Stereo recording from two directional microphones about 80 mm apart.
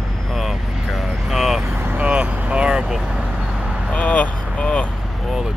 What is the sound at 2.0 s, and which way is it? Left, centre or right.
Speech, centre.